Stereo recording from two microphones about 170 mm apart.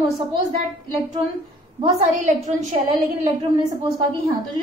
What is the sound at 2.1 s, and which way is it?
Speech, 45° right (ahead or behind).